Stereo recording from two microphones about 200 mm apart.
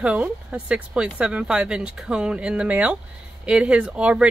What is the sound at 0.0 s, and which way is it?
Speech, 5° right (ahead or behind).